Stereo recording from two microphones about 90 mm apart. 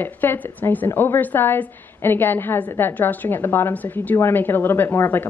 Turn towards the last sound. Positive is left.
turn(degrees=25)  # may be behind; listen again after turning